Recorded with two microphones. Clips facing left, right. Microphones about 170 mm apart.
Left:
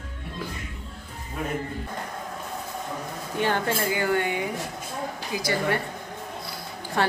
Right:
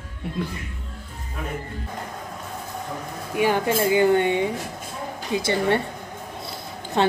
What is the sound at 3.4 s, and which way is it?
Speech, 15° right (ahead or behind).